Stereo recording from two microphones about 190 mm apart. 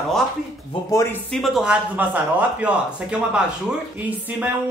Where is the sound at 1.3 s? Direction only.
Centre (ahead or behind).